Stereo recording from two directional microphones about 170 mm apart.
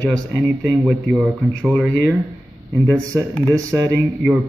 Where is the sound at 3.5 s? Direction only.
20° right (ahead or behind).